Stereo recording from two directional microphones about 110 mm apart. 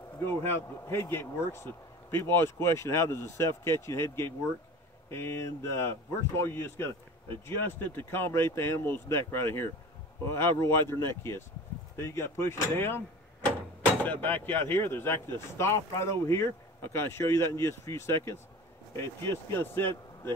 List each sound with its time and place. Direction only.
0.2 s speech: 20° left (ahead or behind)
14.2 s speech: 20° left (ahead or behind)